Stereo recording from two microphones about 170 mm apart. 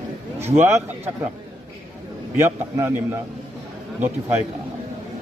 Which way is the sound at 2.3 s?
15° right (ahead or behind).